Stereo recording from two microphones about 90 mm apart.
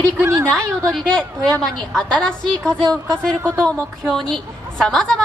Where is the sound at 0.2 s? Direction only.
30° right (ahead or behind).